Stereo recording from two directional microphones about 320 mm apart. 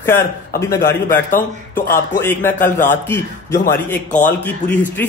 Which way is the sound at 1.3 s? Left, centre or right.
Left.